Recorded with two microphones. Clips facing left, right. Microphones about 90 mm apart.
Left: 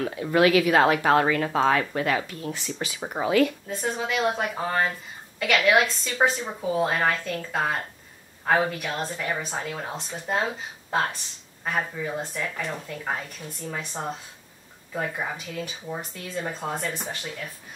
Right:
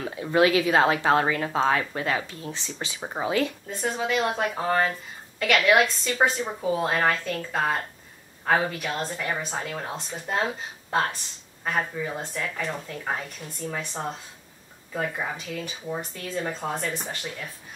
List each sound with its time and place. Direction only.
0.0 s speech: 25° right (ahead or behind)
3.7 s speech: centre (ahead or behind)